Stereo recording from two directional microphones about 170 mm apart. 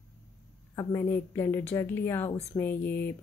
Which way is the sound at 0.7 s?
15° left (ahead or behind).